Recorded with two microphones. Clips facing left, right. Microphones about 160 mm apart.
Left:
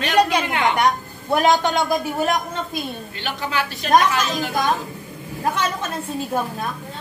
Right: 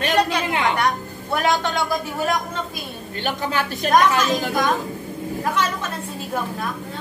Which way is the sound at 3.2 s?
45° right (ahead or behind).